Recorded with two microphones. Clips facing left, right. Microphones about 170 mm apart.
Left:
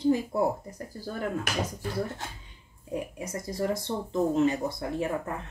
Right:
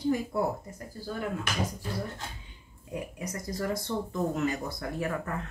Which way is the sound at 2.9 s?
25° left (ahead or behind).